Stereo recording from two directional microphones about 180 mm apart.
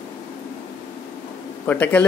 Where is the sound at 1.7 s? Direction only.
10° left (ahead or behind).